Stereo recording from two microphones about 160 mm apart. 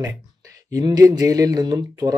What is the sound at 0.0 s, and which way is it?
Speech, 20° right (ahead or behind).